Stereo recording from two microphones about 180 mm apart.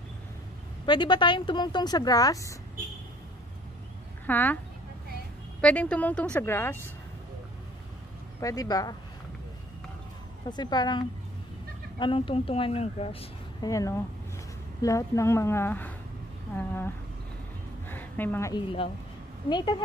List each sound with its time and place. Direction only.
0.8 s a woman's voice: 25° left (ahead or behind)
4.3 s speech: 10° left (ahead or behind)
5.6 s speech: 5° left (ahead or behind)
8.4 s a woman's voice: 20° left (ahead or behind)
10.5 s a woman's voice: 25° left (ahead or behind)
13.7 s speech: 20° left (ahead or behind)
17.8 s a sound: 10° left (ahead or behind)
18.5 s a woman's voice: 30° left (ahead or behind)